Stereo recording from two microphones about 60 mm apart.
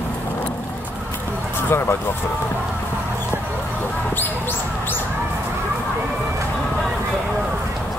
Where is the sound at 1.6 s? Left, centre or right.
Left.